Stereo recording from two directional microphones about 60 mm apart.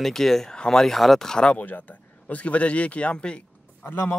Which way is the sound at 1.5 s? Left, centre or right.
Left.